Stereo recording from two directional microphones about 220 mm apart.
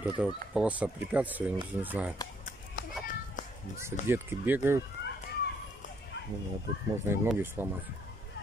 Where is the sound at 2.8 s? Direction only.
45° left (ahead or behind).